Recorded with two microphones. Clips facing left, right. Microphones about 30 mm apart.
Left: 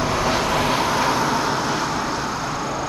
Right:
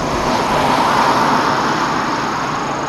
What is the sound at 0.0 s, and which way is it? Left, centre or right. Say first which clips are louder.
Vehicle: right 4 dB; centre.